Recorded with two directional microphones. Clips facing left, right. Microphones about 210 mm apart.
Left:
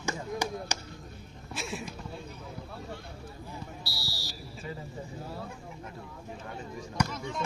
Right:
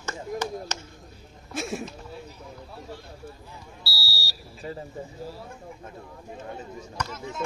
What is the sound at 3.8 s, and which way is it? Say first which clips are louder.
Fire alarm: right 1 dB; 20° left (ahead or behind).